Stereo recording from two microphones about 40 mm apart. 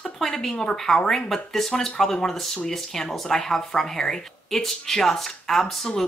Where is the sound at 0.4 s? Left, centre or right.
Centre.